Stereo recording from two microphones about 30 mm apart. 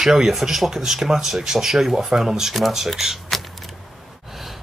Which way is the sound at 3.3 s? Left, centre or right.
Centre.